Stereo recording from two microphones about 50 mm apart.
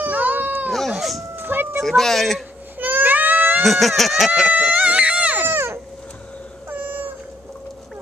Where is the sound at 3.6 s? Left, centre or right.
Centre.